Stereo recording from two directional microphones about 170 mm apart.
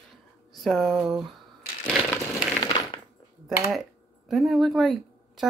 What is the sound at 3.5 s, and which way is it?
Speech, centre (ahead or behind).